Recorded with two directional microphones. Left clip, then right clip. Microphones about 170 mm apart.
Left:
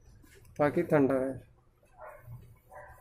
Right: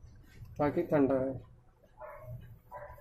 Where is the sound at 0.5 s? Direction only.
30° left (ahead or behind).